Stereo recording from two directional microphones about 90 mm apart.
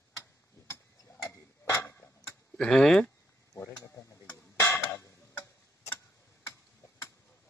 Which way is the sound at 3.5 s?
35° left (ahead or behind).